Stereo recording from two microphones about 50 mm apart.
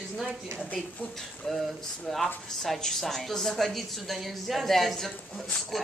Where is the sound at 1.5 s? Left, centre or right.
Centre.